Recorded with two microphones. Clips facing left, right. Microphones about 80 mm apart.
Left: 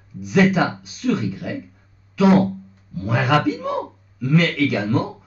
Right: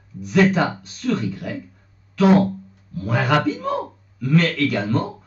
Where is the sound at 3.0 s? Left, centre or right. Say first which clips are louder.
Left 1 dB; centre.